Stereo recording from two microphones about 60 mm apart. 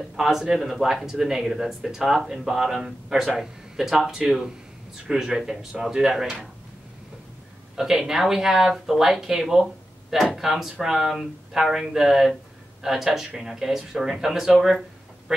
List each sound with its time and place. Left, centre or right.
0.1 s speech: centre
7.7 s speech: centre